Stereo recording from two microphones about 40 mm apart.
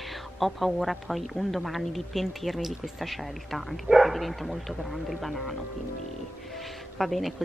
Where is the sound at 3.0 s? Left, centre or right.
Centre.